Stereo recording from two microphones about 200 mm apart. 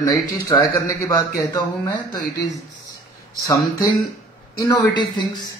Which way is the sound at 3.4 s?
20° left (ahead or behind).